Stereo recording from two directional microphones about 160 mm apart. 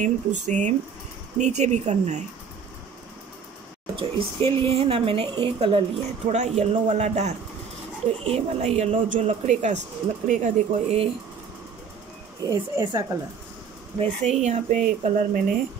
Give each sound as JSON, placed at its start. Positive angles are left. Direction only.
{"t": 0.0, "sound": "speech", "side_deg": -50}
{"t": 3.9, "sound": "speech", "side_deg": -35}
{"t": 12.4, "sound": "speech", "side_deg": -20}
{"t": 13.9, "sound": "speech", "side_deg": -45}